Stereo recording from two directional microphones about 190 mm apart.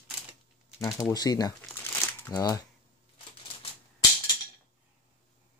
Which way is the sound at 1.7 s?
10° left (ahead or behind).